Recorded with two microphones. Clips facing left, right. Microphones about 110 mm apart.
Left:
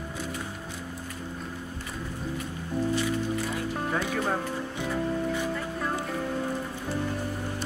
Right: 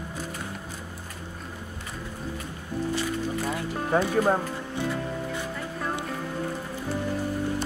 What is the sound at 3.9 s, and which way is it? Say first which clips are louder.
Speech: right 8 dB; 35° right (ahead or behind).